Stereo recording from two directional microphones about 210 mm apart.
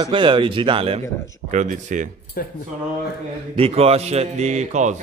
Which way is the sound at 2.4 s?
45° left (ahead or behind).